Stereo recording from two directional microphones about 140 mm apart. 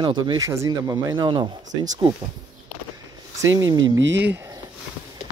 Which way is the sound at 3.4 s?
20° right (ahead or behind).